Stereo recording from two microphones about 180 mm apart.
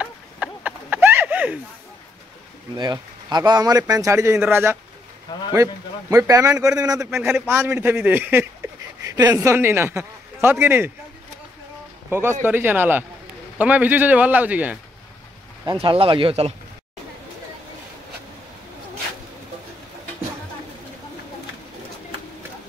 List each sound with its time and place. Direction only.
0.0 s a sound: 10° right (ahead or behind)
2.8 s a man's voice: 25° right (ahead or behind)
12.1 s a man's voice: 15° right (ahead or behind)
15.6 s speech: 25° right (ahead or behind)